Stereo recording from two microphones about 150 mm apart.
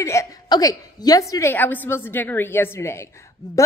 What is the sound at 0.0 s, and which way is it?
A woman's voice, 20° left (ahead or behind).